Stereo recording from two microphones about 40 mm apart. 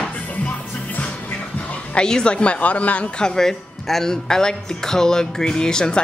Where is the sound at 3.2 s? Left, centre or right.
Centre.